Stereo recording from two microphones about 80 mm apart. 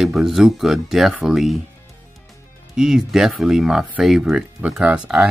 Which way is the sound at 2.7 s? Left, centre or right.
Centre.